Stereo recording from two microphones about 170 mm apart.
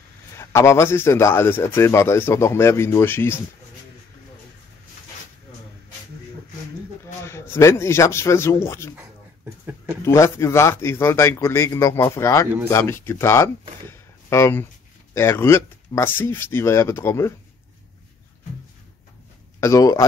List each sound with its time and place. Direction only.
0.4 s speech: 15° left (ahead or behind)
7.2 s speech: 15° left (ahead or behind)
10.0 s speech: 15° left (ahead or behind)
19.6 s speech: 20° left (ahead or behind)